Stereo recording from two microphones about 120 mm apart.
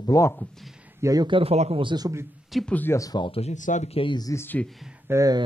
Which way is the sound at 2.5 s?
10° left (ahead or behind).